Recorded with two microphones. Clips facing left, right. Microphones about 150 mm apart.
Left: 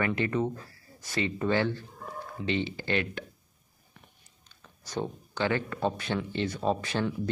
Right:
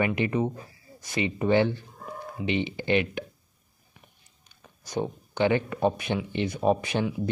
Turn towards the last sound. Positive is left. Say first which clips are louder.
# right 4 dB
turn(degrees=-15)  # may be behind; listen again after turning